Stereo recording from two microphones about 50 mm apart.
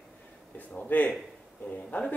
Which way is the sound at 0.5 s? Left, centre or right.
Left.